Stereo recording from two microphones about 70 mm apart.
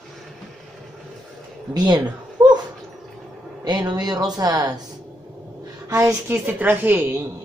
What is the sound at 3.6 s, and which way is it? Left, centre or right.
Speech, right.